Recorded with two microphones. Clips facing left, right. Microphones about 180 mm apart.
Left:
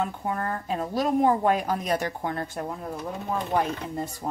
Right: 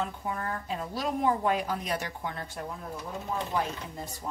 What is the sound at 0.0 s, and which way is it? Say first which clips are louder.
A woman's voice: left 5 dB; 55° left (ahead or behind).